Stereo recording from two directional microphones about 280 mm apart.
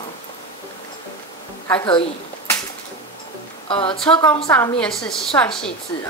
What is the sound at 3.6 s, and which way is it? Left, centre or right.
A woman's voice, centre.